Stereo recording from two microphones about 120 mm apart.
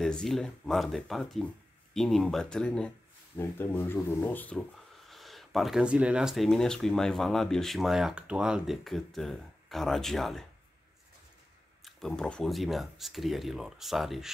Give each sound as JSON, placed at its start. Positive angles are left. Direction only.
{"t": 0.0, "sound": "speech", "side_deg": 5}
{"t": 4.6, "sound": "speech", "side_deg": 0}
{"t": 12.1, "sound": "speech", "side_deg": 10}